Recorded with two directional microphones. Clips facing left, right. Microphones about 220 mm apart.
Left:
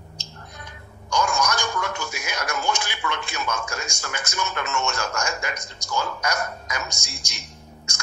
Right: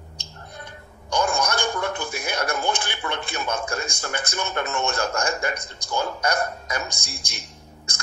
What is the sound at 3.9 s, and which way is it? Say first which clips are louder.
Speech: right 3 dB; 55° right (ahead or behind).